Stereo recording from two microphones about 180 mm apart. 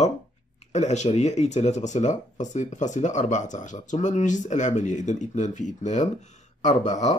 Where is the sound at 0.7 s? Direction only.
40° left (ahead or behind).